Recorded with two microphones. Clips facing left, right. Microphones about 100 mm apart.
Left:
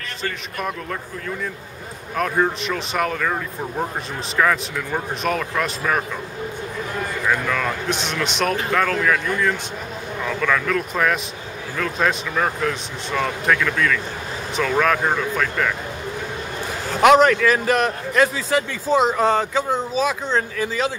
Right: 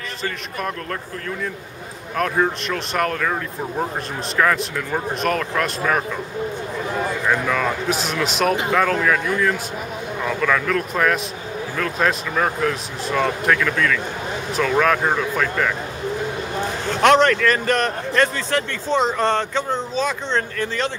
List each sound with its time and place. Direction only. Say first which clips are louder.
2.1 s a man's voice: even; centre (ahead or behind)
7.2 s a man's voice: even; 5° right (ahead or behind)
17.0 s a man's voice: left 2 dB; 5° left (ahead or behind)